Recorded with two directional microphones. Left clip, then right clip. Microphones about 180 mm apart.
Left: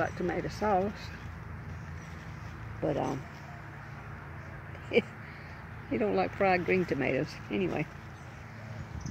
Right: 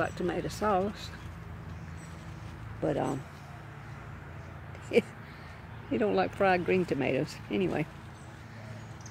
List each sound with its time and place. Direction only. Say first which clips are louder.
0.0 s speech: even; 10° right (ahead or behind)
2.8 s speech: right 1 dB; 15° right (ahead or behind)
4.9 s speech: right 1 dB; 15° right (ahead or behind)